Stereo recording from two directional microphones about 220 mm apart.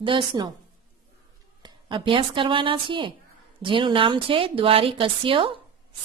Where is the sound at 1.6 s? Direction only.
20° right (ahead or behind).